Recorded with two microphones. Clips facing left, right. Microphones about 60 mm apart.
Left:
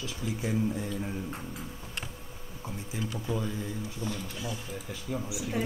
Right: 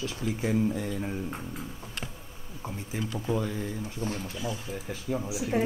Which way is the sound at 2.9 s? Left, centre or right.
Right.